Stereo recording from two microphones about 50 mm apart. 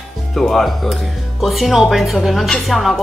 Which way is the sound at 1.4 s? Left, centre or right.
Centre.